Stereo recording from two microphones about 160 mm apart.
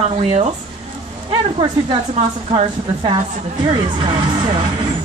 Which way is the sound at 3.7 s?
30° right (ahead or behind).